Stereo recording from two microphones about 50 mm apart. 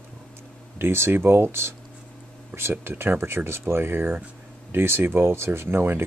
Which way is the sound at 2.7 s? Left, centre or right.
Right.